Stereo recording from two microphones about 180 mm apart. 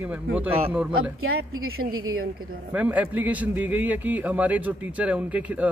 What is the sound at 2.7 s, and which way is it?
A man's voice, 10° right (ahead or behind).